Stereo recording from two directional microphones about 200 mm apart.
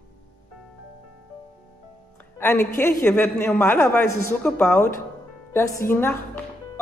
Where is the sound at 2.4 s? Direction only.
15° left (ahead or behind).